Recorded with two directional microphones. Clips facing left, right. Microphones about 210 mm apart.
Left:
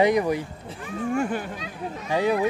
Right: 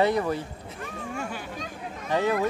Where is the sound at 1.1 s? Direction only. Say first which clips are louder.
Left 11 dB; 50° left (ahead or behind).